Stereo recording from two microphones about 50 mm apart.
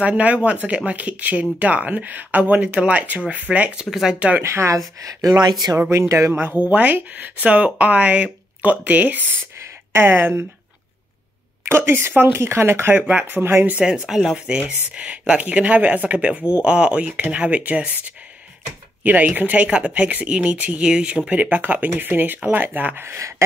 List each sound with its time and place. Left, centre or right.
0.0 s speech: right
4.4 s speech: right
5.9 s speech: right
6.3 s speech: right
6.6 s speech: right
9.9 s a woman's voice: right
11.6 s a woman's voice: right
12.4 s speech: right
13.2 s a woman's voice: right
13.7 s speech: centre
14.1 s speech: centre
14.4 s speech: right
21.3 s speech: right
23.0 s speech: right